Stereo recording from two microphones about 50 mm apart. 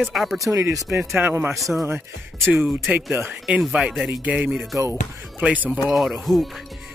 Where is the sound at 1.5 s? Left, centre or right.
Centre.